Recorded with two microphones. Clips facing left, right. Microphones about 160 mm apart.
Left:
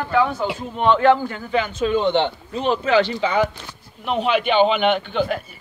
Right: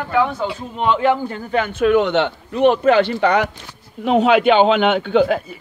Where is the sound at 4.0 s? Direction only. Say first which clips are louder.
Right 6 dB; 90° right.